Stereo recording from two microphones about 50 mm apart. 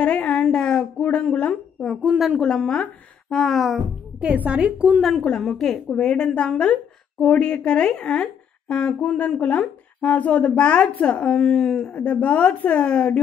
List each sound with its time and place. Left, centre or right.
0.0 s a sound: left
0.3 s a sound: centre
1.3 s a woman's voice: left
2.0 s speech: centre
2.4 s a woman's voice: centre
4.2 s a woman's voice: right
5.4 s a woman's voice: centre
11.9 s a woman's voice: left